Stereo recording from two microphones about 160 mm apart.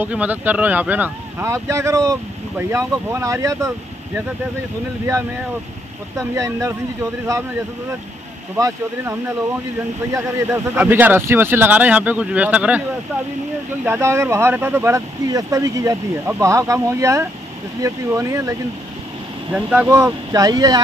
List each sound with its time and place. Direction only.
0.0 s speech: 10° right (ahead or behind)
6.1 s speech: 20° right (ahead or behind)
8.5 s speech: 20° right (ahead or behind)
10.1 s speech: 20° right (ahead or behind)
13.8 s speech: 15° right (ahead or behind)
19.5 s speech: 10° right (ahead or behind)